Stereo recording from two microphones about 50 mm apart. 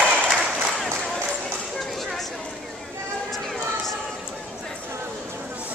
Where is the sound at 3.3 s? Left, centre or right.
Centre.